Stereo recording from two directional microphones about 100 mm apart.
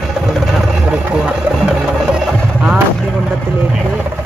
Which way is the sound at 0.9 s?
5° right (ahead or behind).